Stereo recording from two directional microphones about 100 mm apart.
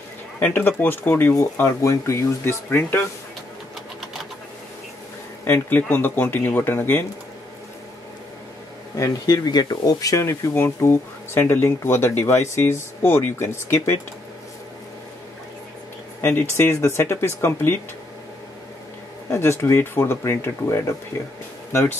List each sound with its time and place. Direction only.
0.4 s speech: 20° left (ahead or behind)
1.3 s speech: 30° left (ahead or behind)
5.4 s speech: 20° left (ahead or behind)
8.9 s speech: 35° left (ahead or behind)
16.2 s speech: 20° left (ahead or behind)
19.3 s speech: 30° left (ahead or behind)